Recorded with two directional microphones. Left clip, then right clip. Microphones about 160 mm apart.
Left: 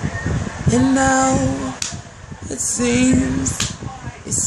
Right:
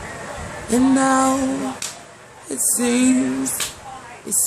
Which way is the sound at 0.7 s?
10° right (ahead or behind).